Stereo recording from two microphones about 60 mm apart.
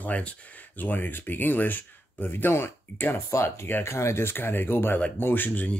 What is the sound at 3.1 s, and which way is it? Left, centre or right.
Speech, left.